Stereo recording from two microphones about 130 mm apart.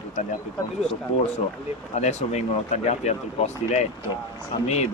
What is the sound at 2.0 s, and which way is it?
Speech, 60° left (ahead or behind).